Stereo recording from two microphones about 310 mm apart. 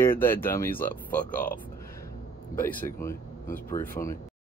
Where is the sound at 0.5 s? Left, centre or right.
Centre.